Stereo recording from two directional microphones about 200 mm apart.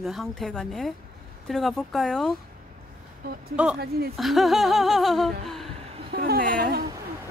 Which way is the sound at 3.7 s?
50° right (ahead or behind).